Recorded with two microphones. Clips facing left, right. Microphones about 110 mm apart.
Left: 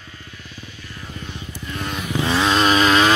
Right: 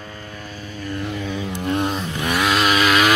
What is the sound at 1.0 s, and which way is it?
Vehicle, 80° right.